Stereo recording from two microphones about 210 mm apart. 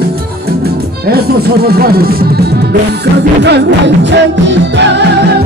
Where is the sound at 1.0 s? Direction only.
45° right (ahead or behind).